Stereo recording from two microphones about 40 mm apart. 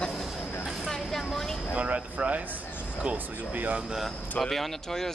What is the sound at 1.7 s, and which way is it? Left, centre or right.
Speech, right.